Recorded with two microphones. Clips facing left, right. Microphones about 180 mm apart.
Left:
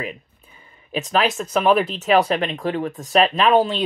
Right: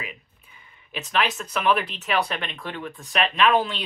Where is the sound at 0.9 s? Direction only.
45° left (ahead or behind).